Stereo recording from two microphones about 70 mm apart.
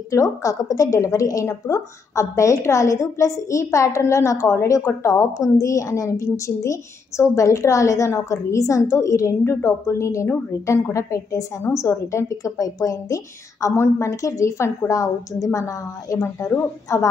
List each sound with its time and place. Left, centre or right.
0.1 s a woman's voice: left
13.7 s a woman's voice: left